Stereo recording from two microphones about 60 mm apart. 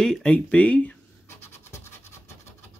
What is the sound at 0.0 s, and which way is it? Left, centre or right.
Speech, centre.